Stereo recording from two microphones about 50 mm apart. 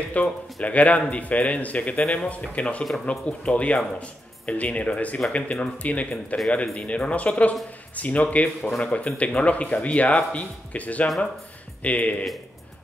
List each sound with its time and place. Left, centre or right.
0.1 s speech: left